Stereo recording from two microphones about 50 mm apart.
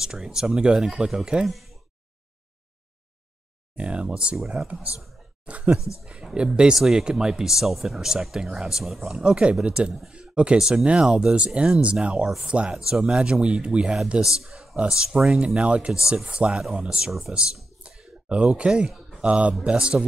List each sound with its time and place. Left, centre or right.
0.0 s speech: centre
1.5 s a sound: centre
3.7 s speech: right
4.4 s speech: centre
5.4 s a sound: right
5.8 s speech: left
6.0 s speech: centre
9.2 s speech: right
12.2 s speech: centre
14.2 s speech: centre
14.8 s speech: centre
15.4 s speech: right
15.9 s speech: centre